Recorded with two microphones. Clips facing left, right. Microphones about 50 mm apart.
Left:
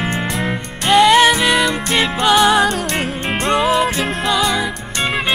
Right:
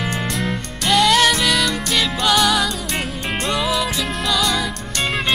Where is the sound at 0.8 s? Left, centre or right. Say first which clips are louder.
Left 5 dB; left.